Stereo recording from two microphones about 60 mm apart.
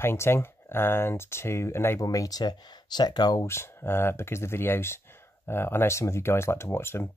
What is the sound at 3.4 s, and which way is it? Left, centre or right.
Speech, left.